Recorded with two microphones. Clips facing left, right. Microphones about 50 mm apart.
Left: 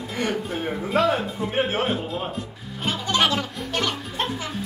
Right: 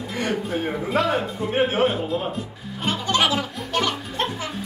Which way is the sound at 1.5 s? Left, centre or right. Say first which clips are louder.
Right 4 dB; centre.